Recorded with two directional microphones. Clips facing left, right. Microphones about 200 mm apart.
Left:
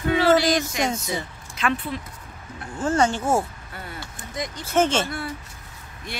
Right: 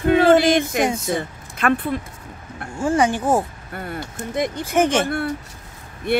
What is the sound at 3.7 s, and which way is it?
Speech, 55° right (ahead or behind).